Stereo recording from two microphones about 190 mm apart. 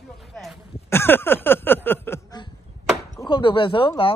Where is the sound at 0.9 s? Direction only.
10° left (ahead or behind).